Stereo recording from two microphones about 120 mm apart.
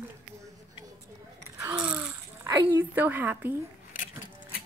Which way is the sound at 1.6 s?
30° right (ahead or behind).